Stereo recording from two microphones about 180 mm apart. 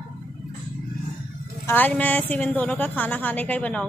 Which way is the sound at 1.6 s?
10° left (ahead or behind).